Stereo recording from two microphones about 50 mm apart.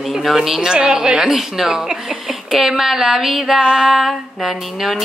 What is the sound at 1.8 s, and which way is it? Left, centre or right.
Speech, centre.